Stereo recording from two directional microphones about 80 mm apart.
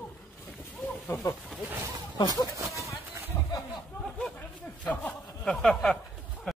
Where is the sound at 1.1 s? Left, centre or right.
Left.